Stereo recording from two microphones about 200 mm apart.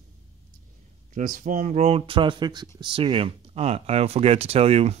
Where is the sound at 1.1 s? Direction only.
40° right (ahead or behind).